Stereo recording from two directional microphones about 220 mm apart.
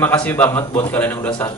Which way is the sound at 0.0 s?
5° left (ahead or behind).